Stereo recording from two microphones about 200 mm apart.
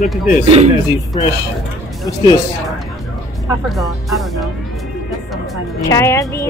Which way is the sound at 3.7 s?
Centre (ahead or behind).